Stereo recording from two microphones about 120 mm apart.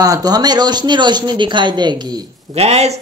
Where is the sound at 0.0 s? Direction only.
30° right (ahead or behind).